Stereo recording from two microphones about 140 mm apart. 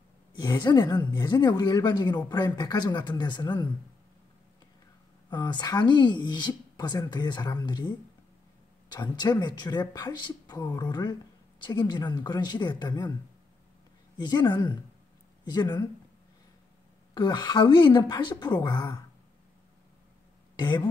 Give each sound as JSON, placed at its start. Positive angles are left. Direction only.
{"t": 0.4, "sound": "a woman's voice", "side_deg": 30}
{"t": 5.3, "sound": "a woman's voice", "side_deg": 30}
{"t": 8.9, "sound": "a woman's voice", "side_deg": 30}
{"t": 14.2, "sound": "a woman's voice", "side_deg": 30}
{"t": 17.1, "sound": "a woman's voice", "side_deg": 30}
{"t": 20.5, "sound": "speech", "side_deg": 30}